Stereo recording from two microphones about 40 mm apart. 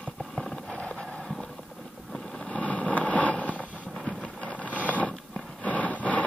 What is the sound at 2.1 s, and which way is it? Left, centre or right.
Vehicle, centre.